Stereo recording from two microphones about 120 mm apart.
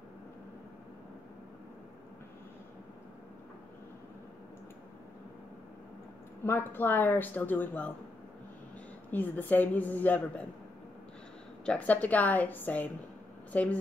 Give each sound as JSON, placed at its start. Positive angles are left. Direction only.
{"t": 6.4, "sound": "speech", "side_deg": 20}
{"t": 9.1, "sound": "speech", "side_deg": 15}
{"t": 11.6, "sound": "speech", "side_deg": 10}